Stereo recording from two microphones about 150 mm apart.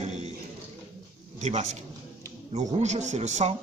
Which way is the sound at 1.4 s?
50° right (ahead or behind).